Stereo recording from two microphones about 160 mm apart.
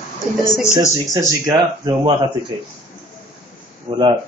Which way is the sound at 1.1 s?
20° right (ahead or behind).